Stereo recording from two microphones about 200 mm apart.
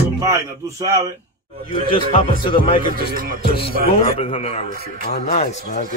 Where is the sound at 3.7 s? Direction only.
45° right (ahead or behind).